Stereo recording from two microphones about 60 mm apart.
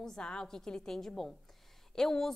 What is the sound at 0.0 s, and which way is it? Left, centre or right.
A woman's voice, centre.